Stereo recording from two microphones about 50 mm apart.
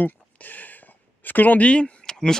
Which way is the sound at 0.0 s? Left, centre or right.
Left.